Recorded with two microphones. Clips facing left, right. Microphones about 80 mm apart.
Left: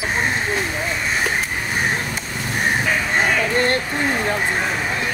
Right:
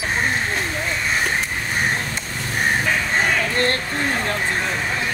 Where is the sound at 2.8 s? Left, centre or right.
Centre.